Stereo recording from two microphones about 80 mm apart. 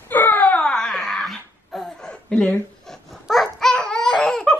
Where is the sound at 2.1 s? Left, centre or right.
Centre.